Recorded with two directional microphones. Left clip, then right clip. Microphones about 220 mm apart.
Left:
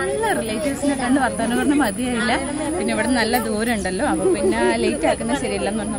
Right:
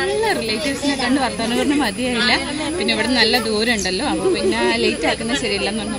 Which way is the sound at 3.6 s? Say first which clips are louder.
Right 2 dB; 10° left (ahead or behind).